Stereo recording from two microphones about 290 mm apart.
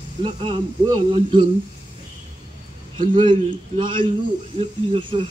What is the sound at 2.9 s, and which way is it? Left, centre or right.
A man's voice, centre.